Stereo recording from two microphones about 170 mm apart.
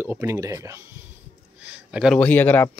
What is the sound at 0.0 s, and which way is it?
Speech, 15° right (ahead or behind).